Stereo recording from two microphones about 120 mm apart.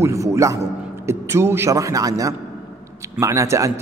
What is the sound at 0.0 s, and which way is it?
A man's voice, 25° right (ahead or behind).